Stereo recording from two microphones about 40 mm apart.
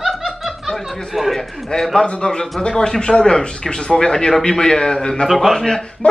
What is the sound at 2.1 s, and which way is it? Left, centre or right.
A man's voice, centre.